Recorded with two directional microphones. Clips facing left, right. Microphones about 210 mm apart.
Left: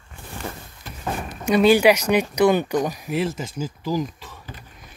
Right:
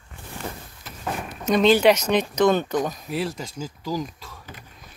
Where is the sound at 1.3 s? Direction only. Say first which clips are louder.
Left 2 dB; 10° left (ahead or behind).